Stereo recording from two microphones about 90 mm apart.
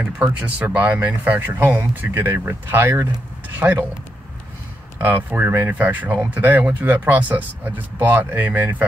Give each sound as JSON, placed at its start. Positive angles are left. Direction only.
{"t": 0.2, "sound": "speech", "side_deg": -20}
{"t": 5.0, "sound": "speech", "side_deg": -20}